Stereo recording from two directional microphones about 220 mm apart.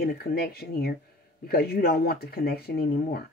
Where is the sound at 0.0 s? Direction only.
45° left (ahead or behind).